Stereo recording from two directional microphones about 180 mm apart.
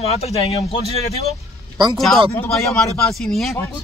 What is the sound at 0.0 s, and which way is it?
Speech, 35° left (ahead or behind).